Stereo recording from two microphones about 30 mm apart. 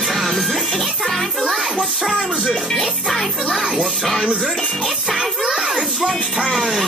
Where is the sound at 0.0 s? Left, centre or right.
Centre.